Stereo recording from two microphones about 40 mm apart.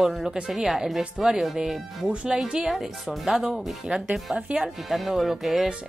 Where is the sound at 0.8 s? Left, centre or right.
Centre.